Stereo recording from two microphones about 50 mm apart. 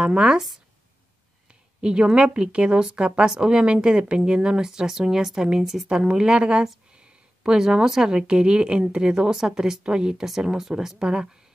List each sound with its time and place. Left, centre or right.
0.0 s a woman's voice: centre
1.5 s a sound: centre
2.1 s a woman's voice: right
5.9 s a woman's voice: centre
6.9 s a sound: centre
7.5 s a woman's voice: centre